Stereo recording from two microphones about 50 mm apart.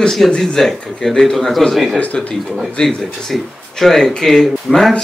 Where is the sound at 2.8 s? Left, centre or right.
Centre.